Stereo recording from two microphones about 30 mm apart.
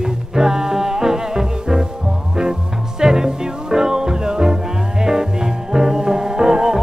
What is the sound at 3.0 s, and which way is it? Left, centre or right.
Music, right.